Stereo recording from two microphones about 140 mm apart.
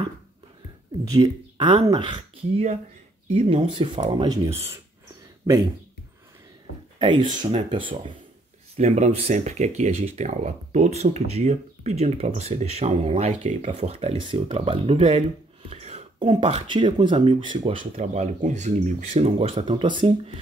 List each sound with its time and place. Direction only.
1.0 s speech: 30° right (ahead or behind)
3.3 s speech: 45° right (ahead or behind)
5.4 s speech: 20° right (ahead or behind)
7.0 s speech: 35° right (ahead or behind)
8.7 s speech: 50° right (ahead or behind)
15.7 s a sound: 50° right (ahead or behind)
16.2 s speech: 35° right (ahead or behind)
17.7 s speech: 60° right (ahead or behind); by 20.2 s 35° right (ahead or behind)